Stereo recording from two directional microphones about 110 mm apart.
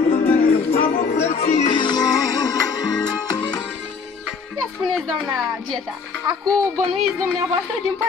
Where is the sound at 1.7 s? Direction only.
45° left (ahead or behind).